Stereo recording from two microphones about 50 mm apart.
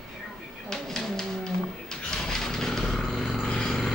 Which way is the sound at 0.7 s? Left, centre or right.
Centre.